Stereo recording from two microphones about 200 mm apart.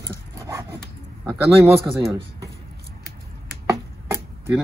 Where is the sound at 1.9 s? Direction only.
15° right (ahead or behind).